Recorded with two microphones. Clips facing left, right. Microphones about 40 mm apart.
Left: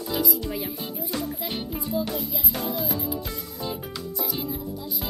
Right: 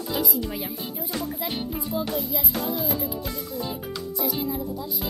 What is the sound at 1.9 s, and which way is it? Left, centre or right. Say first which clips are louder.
Music: left 1 dB; right.